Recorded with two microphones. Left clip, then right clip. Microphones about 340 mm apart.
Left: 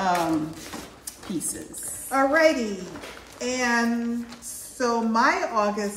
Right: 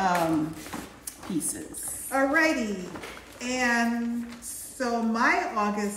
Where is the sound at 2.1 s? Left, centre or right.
Centre.